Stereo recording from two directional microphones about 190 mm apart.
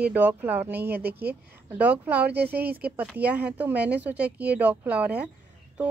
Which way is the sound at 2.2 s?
60° right (ahead or behind).